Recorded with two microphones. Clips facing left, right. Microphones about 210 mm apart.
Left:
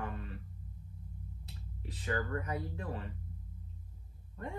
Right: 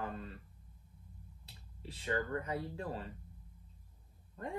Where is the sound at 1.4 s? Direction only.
30° right (ahead or behind).